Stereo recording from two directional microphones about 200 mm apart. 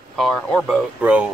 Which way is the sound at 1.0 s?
5° right (ahead or behind).